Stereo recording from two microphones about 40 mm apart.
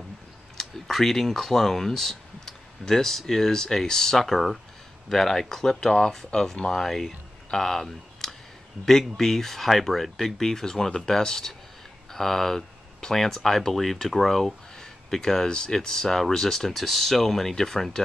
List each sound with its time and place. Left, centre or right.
0.6 s speech: centre
6.8 s speech: centre